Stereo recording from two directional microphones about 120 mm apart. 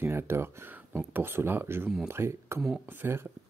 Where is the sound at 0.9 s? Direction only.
15° right (ahead or behind).